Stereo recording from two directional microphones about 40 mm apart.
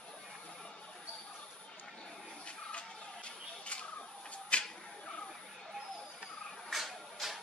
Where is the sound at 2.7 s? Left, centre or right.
Left.